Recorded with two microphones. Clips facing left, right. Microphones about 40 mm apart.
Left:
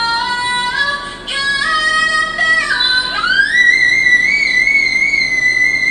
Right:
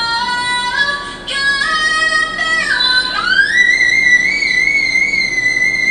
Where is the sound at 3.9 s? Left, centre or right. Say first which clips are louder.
Even; centre.